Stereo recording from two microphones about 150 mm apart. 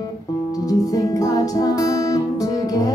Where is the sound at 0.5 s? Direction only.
25° left (ahead or behind).